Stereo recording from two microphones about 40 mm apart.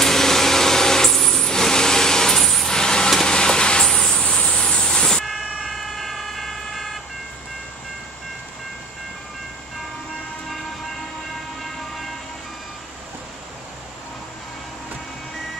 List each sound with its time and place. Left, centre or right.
0.0 s a sound: centre
1.5 s vehicle: centre
2.7 s vehicle: centre
5.2 s emergency vehicle: centre